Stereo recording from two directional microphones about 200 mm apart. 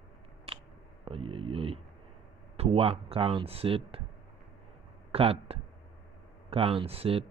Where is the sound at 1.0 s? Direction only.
25° right (ahead or behind).